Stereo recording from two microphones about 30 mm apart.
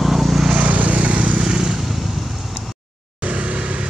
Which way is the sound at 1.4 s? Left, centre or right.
Right.